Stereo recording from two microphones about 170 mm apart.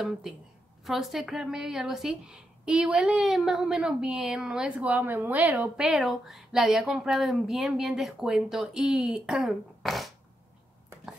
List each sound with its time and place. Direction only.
0.8 s a woman's voice: centre (ahead or behind)